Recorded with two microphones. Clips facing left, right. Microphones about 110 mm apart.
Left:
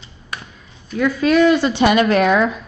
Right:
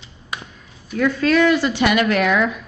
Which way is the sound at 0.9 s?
5° left (ahead or behind).